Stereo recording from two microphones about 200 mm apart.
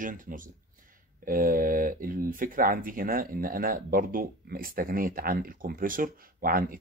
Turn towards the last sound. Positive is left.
turn(degrees=-45)  # may be behind; listen again after turning